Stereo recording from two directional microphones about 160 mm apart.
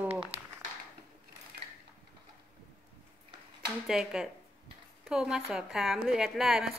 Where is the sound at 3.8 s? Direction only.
5° right (ahead or behind).